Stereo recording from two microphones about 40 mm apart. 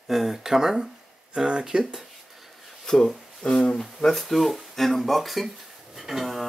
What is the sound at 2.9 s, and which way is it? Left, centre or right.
Speech, centre.